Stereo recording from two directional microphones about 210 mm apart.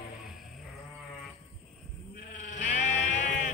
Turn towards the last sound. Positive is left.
turn(degrees=35)  # may be behind; listen again after turning